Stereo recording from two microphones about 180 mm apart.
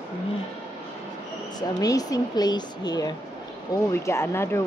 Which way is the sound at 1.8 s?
20° left (ahead or behind).